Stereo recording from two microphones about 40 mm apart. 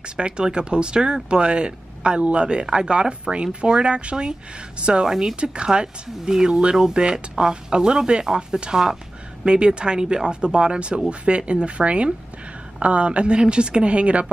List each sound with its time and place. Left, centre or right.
0.0 s speech: right
5.0 s speech: centre
5.3 s speech: right